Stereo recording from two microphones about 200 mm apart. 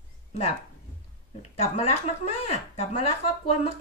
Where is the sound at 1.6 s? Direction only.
30° left (ahead or behind).